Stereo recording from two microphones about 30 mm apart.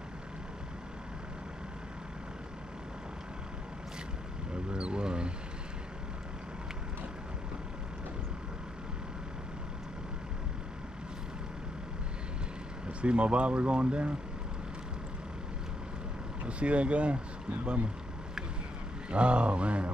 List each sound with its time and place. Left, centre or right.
4.7 s speech: right
12.8 s speech: right
16.4 s speech: right
19.0 s speech: right